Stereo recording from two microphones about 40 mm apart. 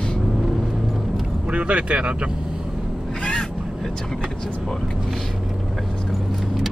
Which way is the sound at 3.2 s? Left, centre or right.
Centre.